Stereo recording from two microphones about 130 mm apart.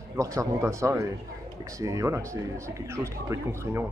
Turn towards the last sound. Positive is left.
turn(degrees=-20)  # may be behind; listen again after turning